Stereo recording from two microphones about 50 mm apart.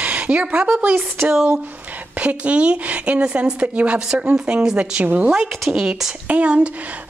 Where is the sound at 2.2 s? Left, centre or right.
Right.